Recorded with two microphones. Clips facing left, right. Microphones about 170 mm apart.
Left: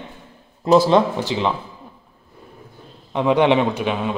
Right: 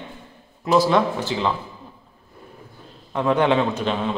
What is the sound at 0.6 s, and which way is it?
Speech, 30° left (ahead or behind).